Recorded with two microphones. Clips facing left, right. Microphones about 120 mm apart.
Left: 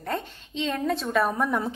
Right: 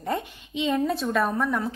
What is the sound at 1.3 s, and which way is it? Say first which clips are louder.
Speech: even; 15° left (ahead or behind).